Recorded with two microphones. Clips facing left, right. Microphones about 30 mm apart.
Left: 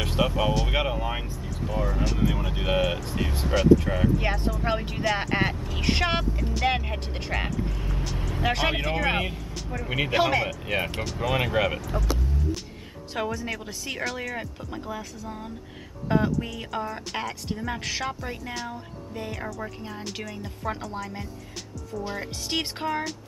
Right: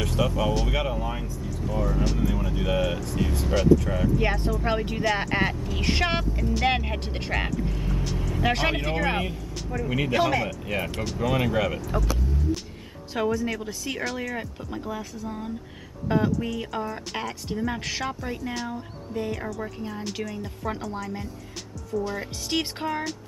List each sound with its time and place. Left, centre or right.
0.0 s speech: left
4.2 s speech: centre
9.1 s speech: centre
9.6 s speech: centre
9.8 s speech: centre
13.1 s speech: centre